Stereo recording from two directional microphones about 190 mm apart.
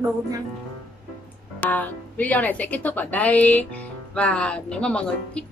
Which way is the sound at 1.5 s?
10° left (ahead or behind).